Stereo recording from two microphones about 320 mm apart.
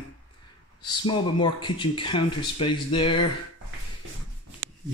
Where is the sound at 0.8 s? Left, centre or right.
Centre.